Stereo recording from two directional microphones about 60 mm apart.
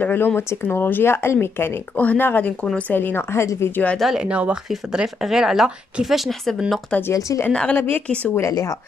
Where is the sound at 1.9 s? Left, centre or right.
Left.